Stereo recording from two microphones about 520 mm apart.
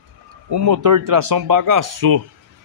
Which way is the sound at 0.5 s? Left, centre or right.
Right.